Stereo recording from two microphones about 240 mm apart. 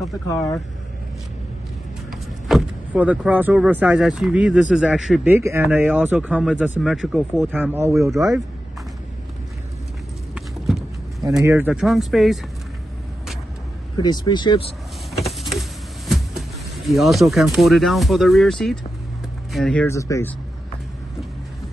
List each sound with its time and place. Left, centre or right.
0.3 s speech: centre
2.0 s speech: centre
10.3 s clip-clop: centre
11.2 s speech: centre
13.9 s speech: centre
15.1 s a sound: centre
16.1 s speech: centre